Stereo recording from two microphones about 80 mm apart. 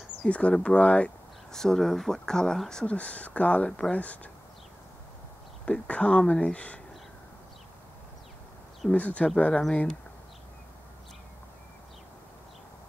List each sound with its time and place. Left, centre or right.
0.2 s speech: centre
5.7 s speech: centre
8.9 s speech: centre